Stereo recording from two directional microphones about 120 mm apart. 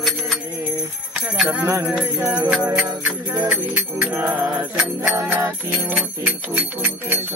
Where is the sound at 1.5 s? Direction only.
25° right (ahead or behind).